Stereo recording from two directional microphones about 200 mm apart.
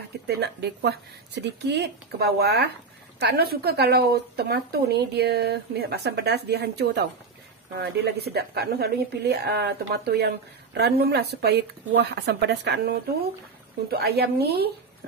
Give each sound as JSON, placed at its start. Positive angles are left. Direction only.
{"t": 0.3, "sound": "speech", "side_deg": -55}